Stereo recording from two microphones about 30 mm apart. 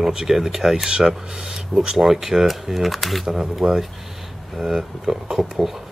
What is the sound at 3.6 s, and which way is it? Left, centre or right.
Speech, centre.